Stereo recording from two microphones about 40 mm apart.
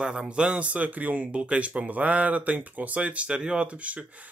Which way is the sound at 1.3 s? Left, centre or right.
Right.